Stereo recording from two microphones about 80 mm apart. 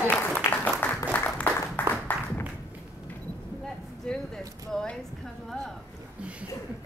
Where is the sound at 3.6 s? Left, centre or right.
Centre.